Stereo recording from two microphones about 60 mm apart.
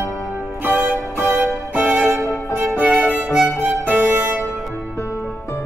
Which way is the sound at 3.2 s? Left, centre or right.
Centre.